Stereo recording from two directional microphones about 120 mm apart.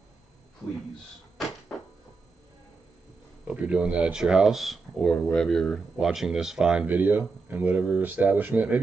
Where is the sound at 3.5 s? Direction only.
10° right (ahead or behind).